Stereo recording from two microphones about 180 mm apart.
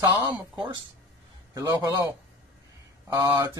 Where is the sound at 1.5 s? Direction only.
20° right (ahead or behind).